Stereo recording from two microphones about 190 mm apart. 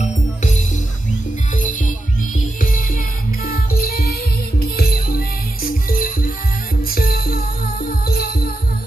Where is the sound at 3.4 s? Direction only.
50° left (ahead or behind).